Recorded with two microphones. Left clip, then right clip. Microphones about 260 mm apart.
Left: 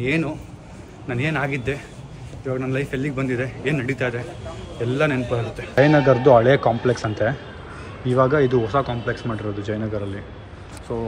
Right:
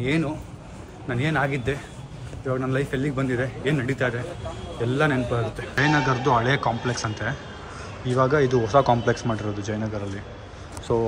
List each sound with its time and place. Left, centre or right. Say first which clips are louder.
0.0 s a man's voice: left 2 dB; centre
10.9 s speech: right 5 dB; right